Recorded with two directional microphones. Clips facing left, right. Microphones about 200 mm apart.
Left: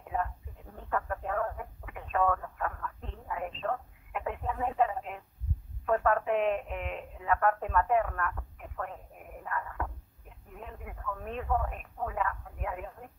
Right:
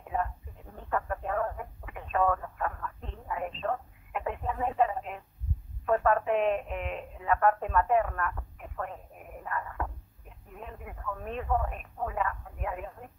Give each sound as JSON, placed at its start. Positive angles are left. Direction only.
{"t": 0.1, "sound": "radio", "side_deg": -25}
{"t": 2.1, "sound": "telephone", "side_deg": -25}
{"t": 5.9, "sound": "radio", "side_deg": -25}
{"t": 9.4, "sound": "a sound", "side_deg": -20}
{"t": 11.3, "sound": "radio", "side_deg": -20}